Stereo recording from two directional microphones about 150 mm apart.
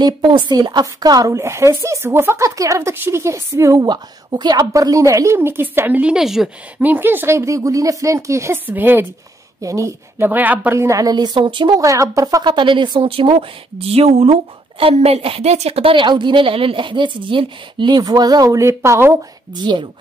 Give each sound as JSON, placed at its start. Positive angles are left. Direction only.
{"t": 0.0, "sound": "a woman's voice", "side_deg": -30}
{"t": 19.6, "sound": "a woman's voice", "side_deg": -30}